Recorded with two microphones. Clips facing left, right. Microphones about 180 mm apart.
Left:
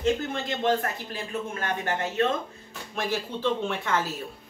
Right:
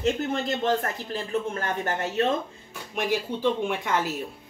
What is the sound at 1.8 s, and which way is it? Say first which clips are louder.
Speech: even; 40° right (ahead or behind).